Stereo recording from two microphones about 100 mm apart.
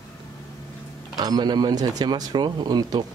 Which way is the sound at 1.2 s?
45° right (ahead or behind).